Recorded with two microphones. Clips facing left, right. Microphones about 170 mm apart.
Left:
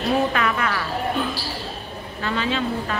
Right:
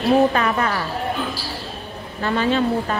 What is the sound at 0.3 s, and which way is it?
Speech, 35° right (ahead or behind).